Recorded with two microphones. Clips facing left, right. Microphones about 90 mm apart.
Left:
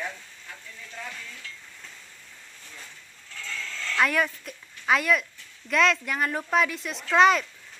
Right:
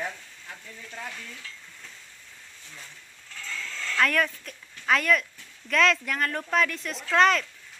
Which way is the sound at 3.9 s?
10° left (ahead or behind).